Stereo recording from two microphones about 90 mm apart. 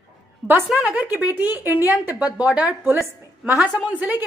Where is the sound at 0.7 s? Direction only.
10° right (ahead or behind).